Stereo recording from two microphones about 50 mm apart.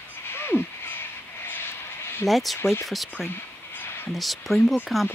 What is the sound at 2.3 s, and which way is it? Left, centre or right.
Speech, centre.